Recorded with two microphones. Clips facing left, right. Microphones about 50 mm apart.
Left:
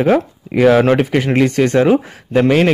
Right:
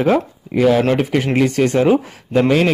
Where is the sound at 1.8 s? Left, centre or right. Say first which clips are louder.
Left 1 dB; left.